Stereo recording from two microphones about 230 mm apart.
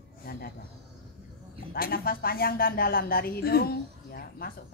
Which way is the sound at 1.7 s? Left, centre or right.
Left.